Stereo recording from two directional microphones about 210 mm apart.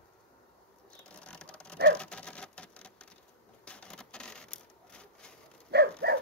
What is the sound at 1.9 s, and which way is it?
Rodents, 5° left (ahead or behind).